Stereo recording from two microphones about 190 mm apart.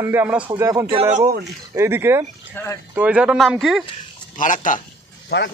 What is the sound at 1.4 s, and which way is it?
Speech, 15° right (ahead or behind).